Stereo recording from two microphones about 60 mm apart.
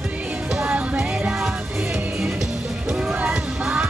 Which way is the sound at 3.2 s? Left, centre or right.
Right.